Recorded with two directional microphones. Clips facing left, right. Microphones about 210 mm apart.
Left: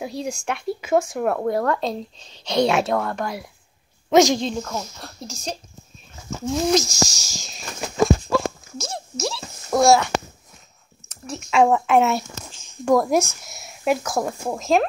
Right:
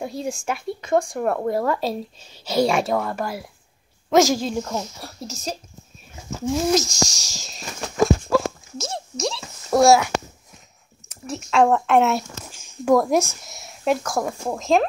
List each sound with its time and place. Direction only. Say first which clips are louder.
0.0 s speech: even; centre (ahead or behind)
8.9 s a sound: right 1 dB; centre (ahead or behind)
11.2 s speech: even; centre (ahead or behind)